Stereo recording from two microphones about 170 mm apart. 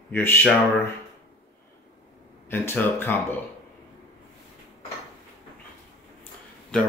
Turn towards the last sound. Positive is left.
turn(degrees=10)  # may be behind; listen again after turning